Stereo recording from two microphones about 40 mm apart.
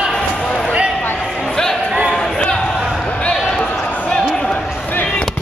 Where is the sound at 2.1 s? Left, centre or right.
Centre.